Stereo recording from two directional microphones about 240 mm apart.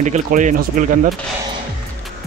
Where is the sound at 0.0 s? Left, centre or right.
Right.